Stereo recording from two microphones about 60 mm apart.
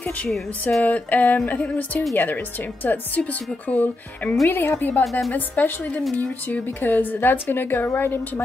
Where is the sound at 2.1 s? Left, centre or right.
Left.